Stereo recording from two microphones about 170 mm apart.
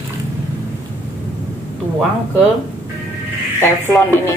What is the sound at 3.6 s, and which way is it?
Speech, 15° left (ahead or behind).